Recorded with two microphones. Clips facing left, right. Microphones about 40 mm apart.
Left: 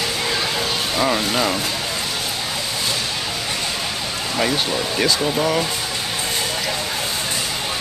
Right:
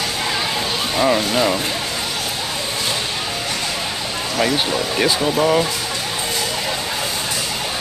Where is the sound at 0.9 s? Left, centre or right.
Centre.